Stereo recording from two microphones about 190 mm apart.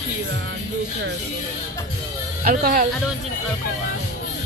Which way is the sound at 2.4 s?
45° right (ahead or behind).